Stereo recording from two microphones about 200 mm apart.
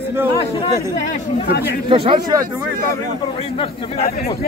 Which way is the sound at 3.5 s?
30° left (ahead or behind).